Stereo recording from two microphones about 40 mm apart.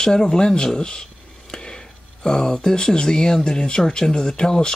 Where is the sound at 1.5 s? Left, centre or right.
Centre.